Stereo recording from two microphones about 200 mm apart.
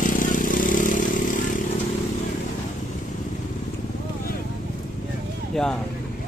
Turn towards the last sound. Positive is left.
turn(degrees=5)  # may be behind; listen again after turning